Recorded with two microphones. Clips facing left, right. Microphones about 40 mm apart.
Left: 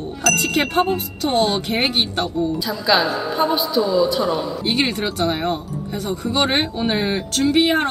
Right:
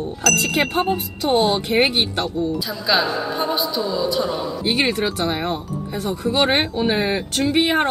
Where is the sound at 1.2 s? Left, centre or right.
Centre.